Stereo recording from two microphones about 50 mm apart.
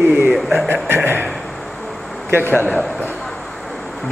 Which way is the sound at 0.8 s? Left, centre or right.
Right.